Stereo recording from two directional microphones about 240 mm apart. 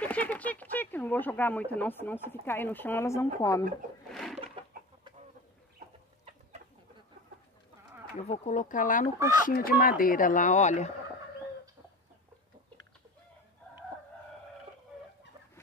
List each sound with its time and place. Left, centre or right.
0.0 s speech: centre
4.1 s a sound: centre
8.3 s speech: left